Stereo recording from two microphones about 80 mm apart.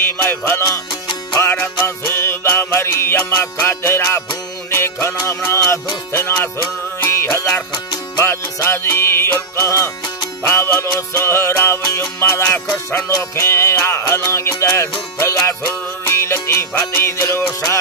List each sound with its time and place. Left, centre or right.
0.5 s music: left
8.5 s music: left